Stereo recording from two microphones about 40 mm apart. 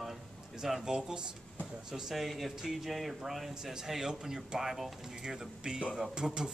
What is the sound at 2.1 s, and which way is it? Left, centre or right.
Speech, centre.